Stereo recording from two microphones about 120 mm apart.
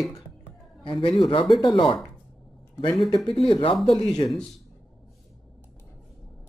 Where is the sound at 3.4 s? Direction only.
45° left (ahead or behind).